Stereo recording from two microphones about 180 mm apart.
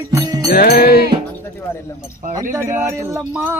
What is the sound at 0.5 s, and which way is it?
Music, 60° left (ahead or behind).